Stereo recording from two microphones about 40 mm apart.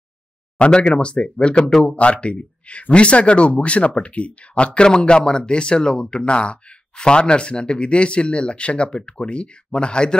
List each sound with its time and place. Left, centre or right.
0.6 s speech: left